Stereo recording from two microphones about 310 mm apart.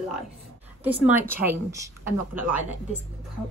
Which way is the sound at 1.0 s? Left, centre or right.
Centre.